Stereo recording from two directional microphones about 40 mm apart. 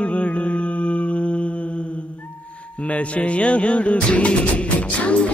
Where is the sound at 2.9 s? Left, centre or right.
Left.